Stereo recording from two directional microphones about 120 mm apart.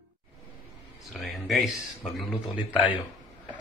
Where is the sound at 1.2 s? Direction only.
Centre (ahead or behind).